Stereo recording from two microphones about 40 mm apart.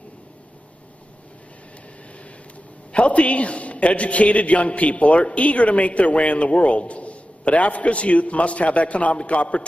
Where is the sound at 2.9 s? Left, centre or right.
Left.